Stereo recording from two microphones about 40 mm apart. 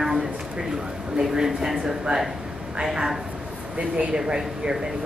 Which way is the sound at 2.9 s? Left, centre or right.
Centre.